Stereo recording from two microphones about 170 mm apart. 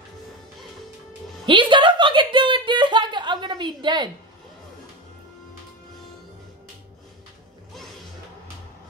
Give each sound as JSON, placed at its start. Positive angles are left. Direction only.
{"t": 1.4, "sound": "speech", "side_deg": -30}